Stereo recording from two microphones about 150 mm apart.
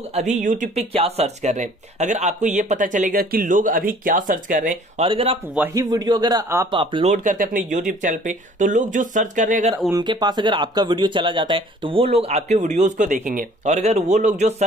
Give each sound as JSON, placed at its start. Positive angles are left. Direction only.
{"t": 0.1, "sound": "speech", "side_deg": -55}
{"t": 0.9, "sound": "speech", "side_deg": -45}
{"t": 5.0, "sound": "speech", "side_deg": -35}
{"t": 5.8, "sound": "a man's voice", "side_deg": -25}
{"t": 6.7, "sound": "speech", "side_deg": -35}
{"t": 7.1, "sound": "speech", "side_deg": -60}
{"t": 9.8, "sound": "speech", "side_deg": -25}